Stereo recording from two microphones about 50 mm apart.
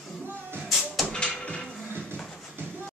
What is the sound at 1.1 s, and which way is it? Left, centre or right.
Music, centre.